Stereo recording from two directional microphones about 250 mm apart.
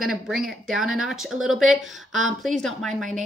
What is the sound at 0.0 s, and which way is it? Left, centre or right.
Speech, centre.